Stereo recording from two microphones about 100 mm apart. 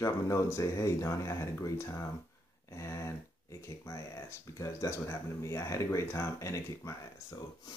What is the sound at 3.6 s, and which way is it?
Speech, 30° left (ahead or behind).